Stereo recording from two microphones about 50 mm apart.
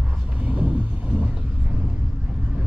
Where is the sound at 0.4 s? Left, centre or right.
Right.